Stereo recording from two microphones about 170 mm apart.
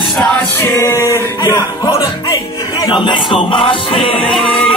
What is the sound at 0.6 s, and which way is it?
Music, 15° left (ahead or behind).